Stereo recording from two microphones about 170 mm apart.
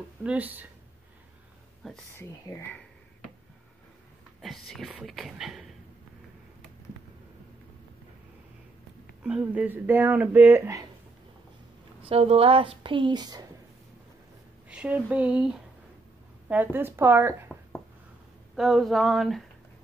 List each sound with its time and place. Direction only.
0.2 s speech: 10° right (ahead or behind)
1.8 s speech: centre (ahead or behind)
2.5 s speech: 20° left (ahead or behind)
4.4 s speech: centre (ahead or behind)
9.2 s speech: 5° right (ahead or behind)
12.0 s speech: 35° right (ahead or behind)
14.7 s speech: 5° right (ahead or behind)
18.6 s speech: centre (ahead or behind)